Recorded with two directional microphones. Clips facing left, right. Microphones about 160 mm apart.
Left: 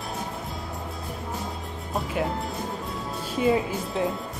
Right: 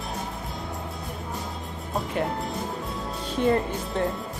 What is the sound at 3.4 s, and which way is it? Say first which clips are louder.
Speech: even; 5° left (ahead or behind).